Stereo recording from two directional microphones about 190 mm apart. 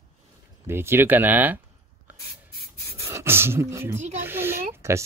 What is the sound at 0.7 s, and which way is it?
Speech, 10° right (ahead or behind).